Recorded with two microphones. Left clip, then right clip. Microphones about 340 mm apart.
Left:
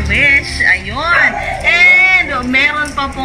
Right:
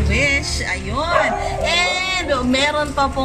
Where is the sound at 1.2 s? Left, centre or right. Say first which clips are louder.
Left 6 dB; right.